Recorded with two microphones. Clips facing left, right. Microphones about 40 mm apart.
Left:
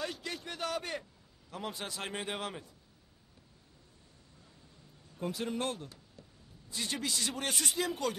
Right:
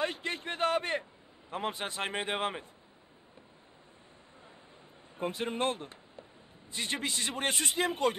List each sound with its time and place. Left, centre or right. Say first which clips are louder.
0.0 s a sound: right 5 dB; right
1.5 s a man's voice: right 5 dB; right
5.1 s a man's voice: right 2 dB; right